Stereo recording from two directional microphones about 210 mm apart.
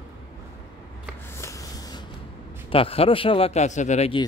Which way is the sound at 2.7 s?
25° left (ahead or behind).